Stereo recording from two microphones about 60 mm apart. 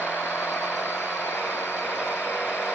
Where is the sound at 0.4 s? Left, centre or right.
Left.